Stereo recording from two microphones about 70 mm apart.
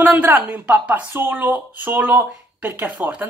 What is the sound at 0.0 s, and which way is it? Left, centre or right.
Speech, right.